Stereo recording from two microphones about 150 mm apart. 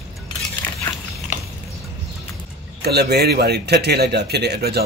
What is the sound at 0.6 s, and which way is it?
Dog, 10° left (ahead or behind).